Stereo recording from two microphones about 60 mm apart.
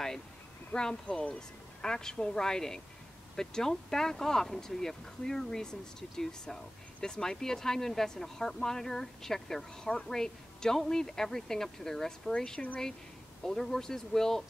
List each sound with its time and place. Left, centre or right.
0.7 s speech: centre